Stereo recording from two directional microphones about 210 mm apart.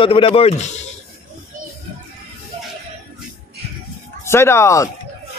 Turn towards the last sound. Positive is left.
turn(degrees=15)  # may be behind; listen again after turning